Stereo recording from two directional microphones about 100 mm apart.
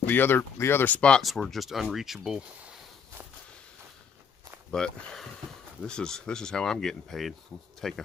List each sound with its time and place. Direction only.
0.0 s speech: 20° left (ahead or behind)
1.2 s speech: centre (ahead or behind)
4.6 s speech: 5° left (ahead or behind)